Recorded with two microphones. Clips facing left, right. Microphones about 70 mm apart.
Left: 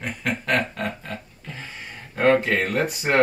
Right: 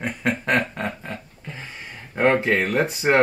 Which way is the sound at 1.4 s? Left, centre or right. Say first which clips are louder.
Right 1 dB; centre.